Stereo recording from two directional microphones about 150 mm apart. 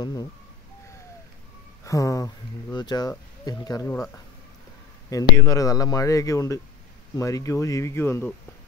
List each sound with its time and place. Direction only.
0.0 s speech: 25° left (ahead or behind)
1.9 s speech: 20° left (ahead or behind)
5.1 s speech: 20° left (ahead or behind)